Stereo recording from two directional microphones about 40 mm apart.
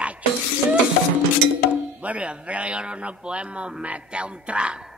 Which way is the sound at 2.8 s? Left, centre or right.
Right.